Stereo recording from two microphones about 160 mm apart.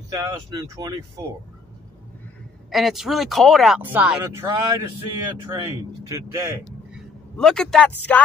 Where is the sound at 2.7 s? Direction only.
Centre (ahead or behind).